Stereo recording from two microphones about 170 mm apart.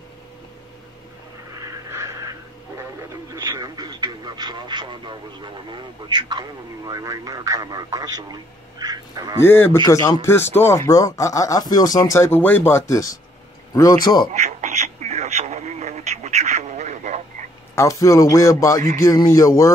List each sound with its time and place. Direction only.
1.6 s goose: 20° right (ahead or behind)
3.3 s a man's voice: 25° right (ahead or behind)
9.4 s a man's voice: 15° left (ahead or behind)
14.3 s radio: 45° right (ahead or behind)
17.7 s a man's voice: 20° left (ahead or behind)